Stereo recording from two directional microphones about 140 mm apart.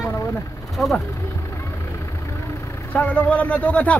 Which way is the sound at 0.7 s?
Centre (ahead or behind).